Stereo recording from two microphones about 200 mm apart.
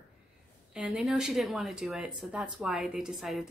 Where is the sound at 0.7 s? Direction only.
Centre (ahead or behind).